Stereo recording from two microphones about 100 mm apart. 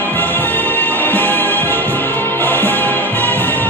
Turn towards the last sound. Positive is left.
turn(degrees=20)  # may be behind; listen again after turning